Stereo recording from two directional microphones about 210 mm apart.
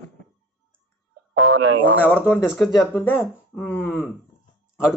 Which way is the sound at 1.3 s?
70° right (ahead or behind).